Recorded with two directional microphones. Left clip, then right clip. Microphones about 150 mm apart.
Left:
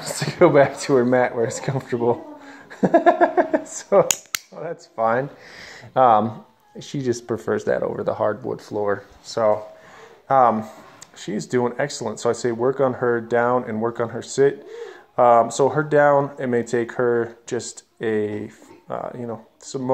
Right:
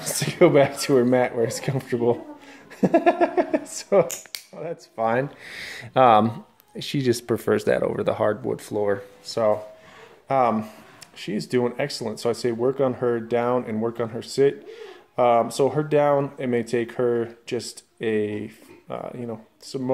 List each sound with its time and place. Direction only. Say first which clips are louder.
0.0 s speech: left 2 dB; 20° right (ahead or behind)
2.8 s a sound: left 4 dB; 10° right (ahead or behind)
3.6 s speech: left 3 dB; 20° right (ahead or behind); by 8.5 s 35° right (ahead or behind)
9.3 s speech: left 2 dB; 20° right (ahead or behind)
10.2 s speech: left 5 dB; centre (ahead or behind)
12.9 s a sound: left 3 dB; 10° right (ahead or behind)
14.7 s speech: left 4 dB; 5° right (ahead or behind)